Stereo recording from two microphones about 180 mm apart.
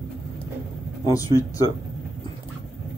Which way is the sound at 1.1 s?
20° left (ahead or behind).